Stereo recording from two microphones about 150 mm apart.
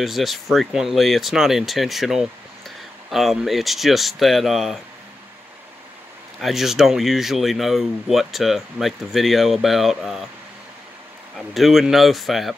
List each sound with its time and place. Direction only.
0.0 s speech: centre (ahead or behind)
6.4 s speech: centre (ahead or behind)
11.3 s speech: centre (ahead or behind)